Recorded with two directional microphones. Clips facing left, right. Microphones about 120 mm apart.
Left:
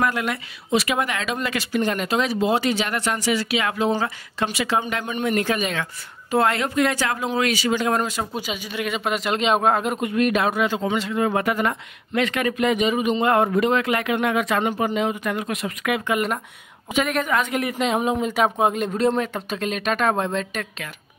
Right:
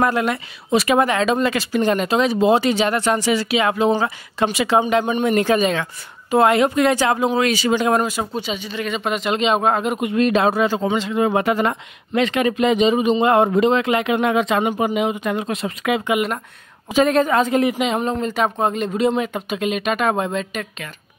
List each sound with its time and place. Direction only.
0.0 s speech: 30° right (ahead or behind)
6.3 s speech: 20° right (ahead or behind)
8.0 s speech: 10° right (ahead or behind)
8.3 s speech: 5° left (ahead or behind)
9.9 s a woman's voice: 25° right (ahead or behind)
17.7 s speech: centre (ahead or behind)